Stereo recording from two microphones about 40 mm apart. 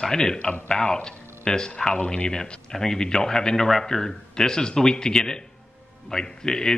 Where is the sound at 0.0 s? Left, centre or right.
Centre.